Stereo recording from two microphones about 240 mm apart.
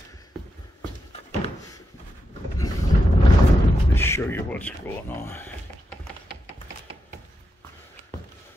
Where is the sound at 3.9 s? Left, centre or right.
Centre.